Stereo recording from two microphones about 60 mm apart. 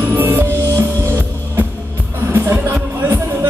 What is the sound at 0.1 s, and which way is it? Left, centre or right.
Music, right.